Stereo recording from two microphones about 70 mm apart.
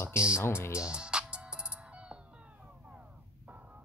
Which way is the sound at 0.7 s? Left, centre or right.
Centre.